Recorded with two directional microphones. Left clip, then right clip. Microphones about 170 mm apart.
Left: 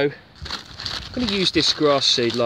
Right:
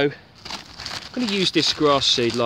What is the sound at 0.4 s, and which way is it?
Crumpling, 35° right (ahead or behind).